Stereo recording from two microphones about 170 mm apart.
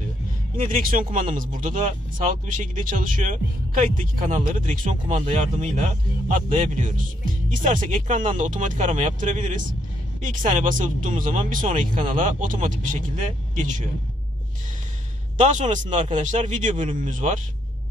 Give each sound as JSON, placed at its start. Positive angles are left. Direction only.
{"t": 0.7, "sound": "speech", "side_deg": -55}
{"t": 15.3, "sound": "speech", "side_deg": -45}